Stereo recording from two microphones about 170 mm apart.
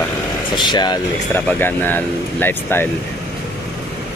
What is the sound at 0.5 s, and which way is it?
Speech, 25° left (ahead or behind).